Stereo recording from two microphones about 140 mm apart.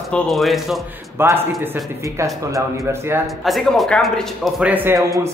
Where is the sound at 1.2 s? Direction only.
15° right (ahead or behind).